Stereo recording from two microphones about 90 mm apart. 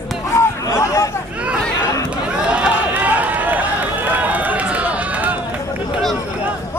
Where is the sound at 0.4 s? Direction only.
30° left (ahead or behind).